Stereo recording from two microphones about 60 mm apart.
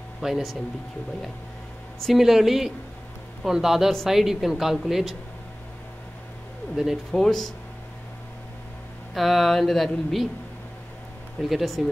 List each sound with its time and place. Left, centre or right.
0.2 s speech: centre
2.0 s speech: centre
7.1 s speech: centre
9.1 s speech: centre
11.4 s speech: centre